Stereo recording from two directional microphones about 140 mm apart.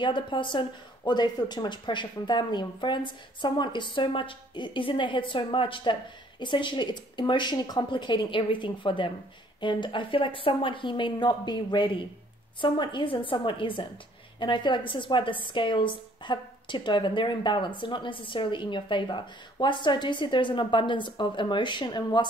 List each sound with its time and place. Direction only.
0.0 s a woman's voice: 35° left (ahead or behind)